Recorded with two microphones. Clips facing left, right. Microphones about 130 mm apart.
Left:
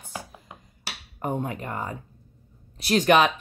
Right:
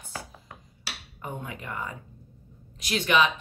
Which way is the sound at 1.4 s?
40° left (ahead or behind).